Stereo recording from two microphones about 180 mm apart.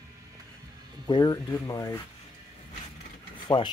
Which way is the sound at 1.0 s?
20° left (ahead or behind).